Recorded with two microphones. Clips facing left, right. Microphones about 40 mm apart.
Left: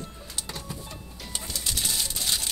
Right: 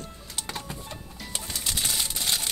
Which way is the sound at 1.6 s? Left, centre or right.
Right.